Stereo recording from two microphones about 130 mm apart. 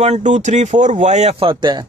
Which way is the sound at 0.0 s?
60° right (ahead or behind).